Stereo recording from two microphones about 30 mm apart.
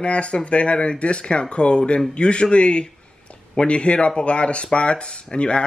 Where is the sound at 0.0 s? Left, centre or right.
Left.